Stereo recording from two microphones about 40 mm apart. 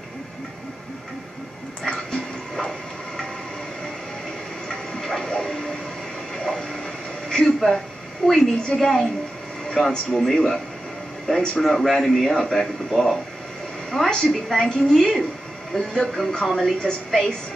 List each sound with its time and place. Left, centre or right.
1.8 s music: centre
4.6 s a sound: centre
5.4 s train: centre
6.3 s a sound: centre
8.2 s a woman's voice: centre
11.3 s a woman's voice: centre
11.6 s a woman's voice: centre